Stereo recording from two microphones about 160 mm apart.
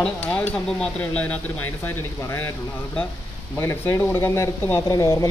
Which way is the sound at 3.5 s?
15° left (ahead or behind).